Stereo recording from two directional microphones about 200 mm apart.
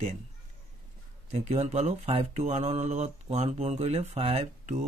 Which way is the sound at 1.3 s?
35° right (ahead or behind).